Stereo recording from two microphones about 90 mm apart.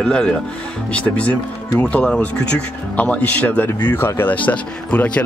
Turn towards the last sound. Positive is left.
turn(degrees=15)  # may be behind; listen again after turning